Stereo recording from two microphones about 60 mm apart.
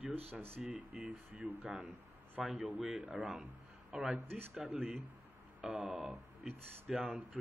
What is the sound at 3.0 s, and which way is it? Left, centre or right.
Speech, right.